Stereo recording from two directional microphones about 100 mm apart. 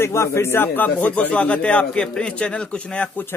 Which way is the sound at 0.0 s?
25° left (ahead or behind).